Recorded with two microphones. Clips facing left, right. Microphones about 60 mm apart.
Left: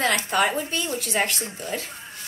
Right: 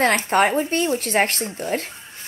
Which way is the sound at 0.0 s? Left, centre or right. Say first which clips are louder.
Right 4 dB; right.